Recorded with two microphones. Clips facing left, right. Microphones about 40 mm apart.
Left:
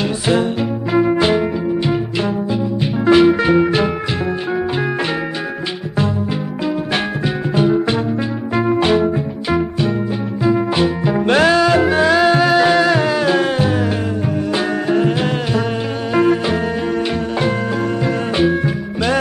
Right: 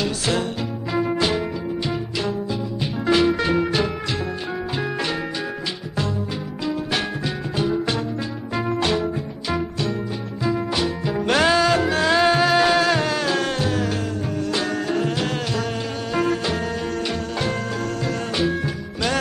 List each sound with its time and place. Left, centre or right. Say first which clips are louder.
0.0 s music: left 6 dB; centre
2.8 s music: left 7 dB; centre
7.5 s music: left 7 dB; left
18.0 s music: left 6 dB; left